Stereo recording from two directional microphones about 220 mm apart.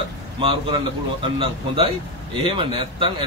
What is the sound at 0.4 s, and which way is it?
Speech, 25° right (ahead or behind).